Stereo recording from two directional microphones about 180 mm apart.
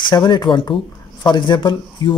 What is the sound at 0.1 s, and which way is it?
Speech, 25° left (ahead or behind).